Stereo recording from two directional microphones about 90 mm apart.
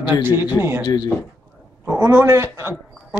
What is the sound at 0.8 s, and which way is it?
Speech, 50° left (ahead or behind).